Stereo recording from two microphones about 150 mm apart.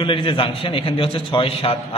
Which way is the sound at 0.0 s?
35° left (ahead or behind).